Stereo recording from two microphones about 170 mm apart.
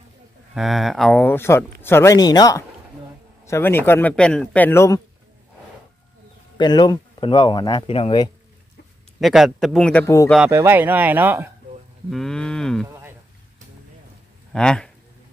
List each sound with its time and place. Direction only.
0.6 s speech: centre (ahead or behind); by 5.0 s 15° left (ahead or behind)
6.6 s speech: 25° left (ahead or behind)
9.2 s speech: centre (ahead or behind)
10.0 s speech: 15° left (ahead or behind)
10.5 s speech: 15° right (ahead or behind)
12.1 s speech: 5° left (ahead or behind)
14.5 s speech: 5° left (ahead or behind)